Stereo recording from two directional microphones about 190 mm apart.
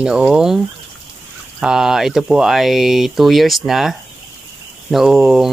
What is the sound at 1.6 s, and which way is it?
Speech, 5° right (ahead or behind).